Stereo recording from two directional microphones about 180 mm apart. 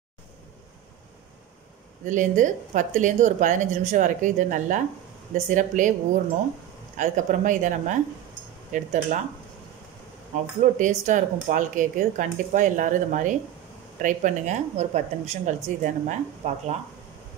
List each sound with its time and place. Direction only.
2.0 s speech: 45° right (ahead or behind)
7.0 s speech: 45° right (ahead or behind)
10.6 s speech: 45° right (ahead or behind)